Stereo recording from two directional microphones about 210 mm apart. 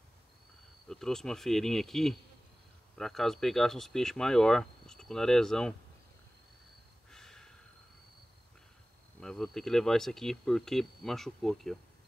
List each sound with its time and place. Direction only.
0.8 s speech: centre (ahead or behind)
7.1 s snort: 5° left (ahead or behind)
9.2 s speech: centre (ahead or behind)